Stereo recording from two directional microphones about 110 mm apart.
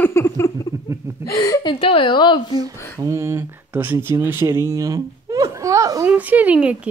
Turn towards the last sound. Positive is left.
turn(degrees=-10)  # may be behind; listen again after turning